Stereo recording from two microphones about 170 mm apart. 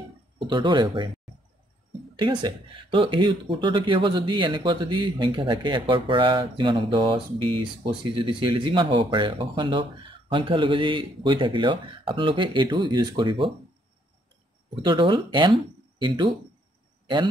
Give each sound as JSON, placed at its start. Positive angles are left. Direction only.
{"t": 0.4, "sound": "speech", "side_deg": -30}
{"t": 2.1, "sound": "speech", "side_deg": -25}
{"t": 14.8, "sound": "speech", "side_deg": -30}